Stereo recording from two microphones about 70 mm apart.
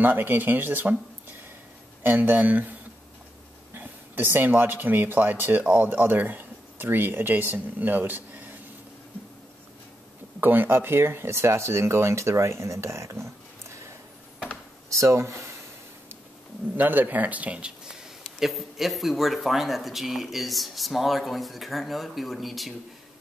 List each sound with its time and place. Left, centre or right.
0.0 s speech: right
2.0 s speech: right
3.7 s speech: right
10.4 s speech: right
16.7 s speech: right
18.4 s speech: centre